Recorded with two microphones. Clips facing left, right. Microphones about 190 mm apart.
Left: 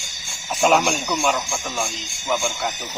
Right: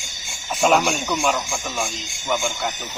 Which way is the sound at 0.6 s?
Centre (ahead or behind).